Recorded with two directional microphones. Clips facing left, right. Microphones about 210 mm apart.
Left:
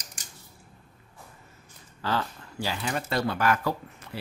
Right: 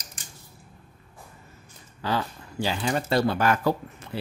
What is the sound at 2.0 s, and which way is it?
Speech, 15° right (ahead or behind).